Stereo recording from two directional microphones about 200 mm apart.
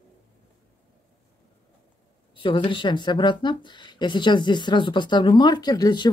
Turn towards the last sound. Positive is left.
turn(degrees=20)  # may be behind; listen again after turning